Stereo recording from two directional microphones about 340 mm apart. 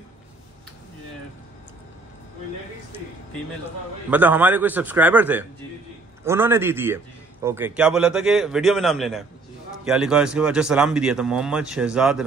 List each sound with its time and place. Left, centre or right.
4.1 s a man's voice: centre